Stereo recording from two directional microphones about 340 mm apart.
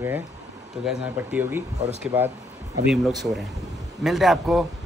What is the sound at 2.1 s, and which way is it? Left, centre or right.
Speech, centre.